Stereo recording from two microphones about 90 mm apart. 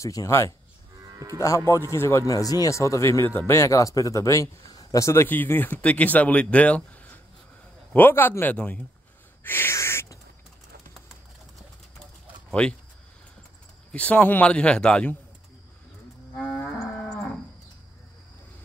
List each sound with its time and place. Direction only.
0.0 s speech: 40° left (ahead or behind)
1.0 s moo: 40° right (ahead or behind)
1.7 s a man's voice: 30° left (ahead or behind)
8.5 s speech: 10° left (ahead or behind)
9.4 s owl: 25° left (ahead or behind)
12.4 s a sound: 10° left (ahead or behind)
13.9 s speech: 15° left (ahead or behind)